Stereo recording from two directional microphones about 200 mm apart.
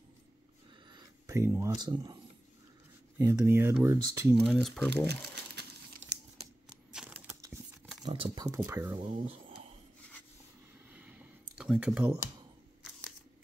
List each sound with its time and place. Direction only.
0.9 s speech: 15° right (ahead or behind)
3.2 s speech: 15° right (ahead or behind)
4.4 s speech: centre (ahead or behind)
5.0 s crumpling: 55° right (ahead or behind)
6.0 s crumpling: 70° right (ahead or behind)
6.9 s crumpling: 5° right (ahead or behind)
8.0 s speech: 25° right (ahead or behind)
10.9 s a sound: 5° right (ahead or behind)